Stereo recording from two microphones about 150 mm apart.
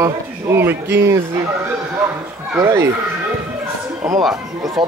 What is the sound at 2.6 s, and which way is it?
Speech, 20° right (ahead or behind).